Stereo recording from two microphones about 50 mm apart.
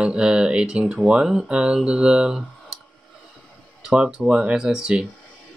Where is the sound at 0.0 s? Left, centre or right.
Right.